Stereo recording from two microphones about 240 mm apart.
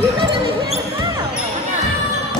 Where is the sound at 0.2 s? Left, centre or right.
Right.